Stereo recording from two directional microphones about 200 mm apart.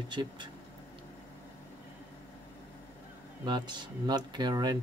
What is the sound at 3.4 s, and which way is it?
Speech, 20° right (ahead or behind).